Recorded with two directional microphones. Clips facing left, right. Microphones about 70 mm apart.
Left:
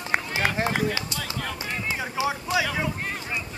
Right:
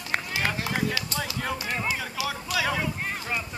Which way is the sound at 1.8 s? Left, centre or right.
Left.